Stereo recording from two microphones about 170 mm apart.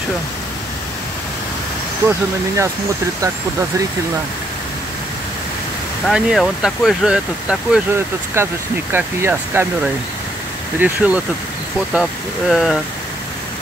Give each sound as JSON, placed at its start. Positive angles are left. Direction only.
{"t": 2.0, "sound": "speech", "side_deg": -15}
{"t": 6.0, "sound": "speech", "side_deg": 0}
{"t": 10.8, "sound": "speech", "side_deg": -10}